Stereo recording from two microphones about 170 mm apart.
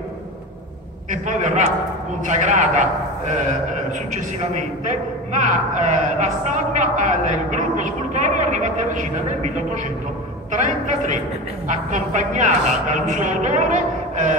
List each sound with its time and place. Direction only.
1.1 s speech: 45° right (ahead or behind)
10.5 s speech: 45° right (ahead or behind)